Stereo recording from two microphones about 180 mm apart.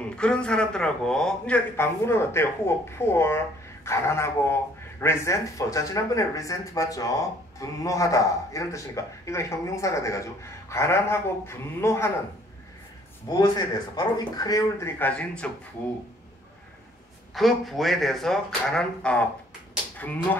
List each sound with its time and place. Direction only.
0.2 s a man's voice: 5° left (ahead or behind)
13.3 s speech: 25° left (ahead or behind); by 15.5 s 5° left (ahead or behind)
17.3 s speech: centre (ahead or behind)